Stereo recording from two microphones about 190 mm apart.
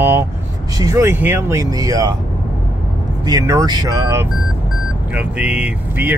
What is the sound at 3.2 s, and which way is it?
Speech, 20° right (ahead or behind).